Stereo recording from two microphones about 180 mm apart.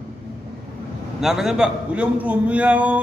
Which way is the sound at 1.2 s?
Centre (ahead or behind).